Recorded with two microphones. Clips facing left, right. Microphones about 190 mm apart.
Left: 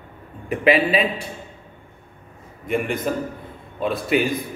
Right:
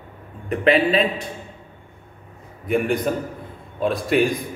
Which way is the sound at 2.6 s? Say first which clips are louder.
Right 3 dB; centre (ahead or behind).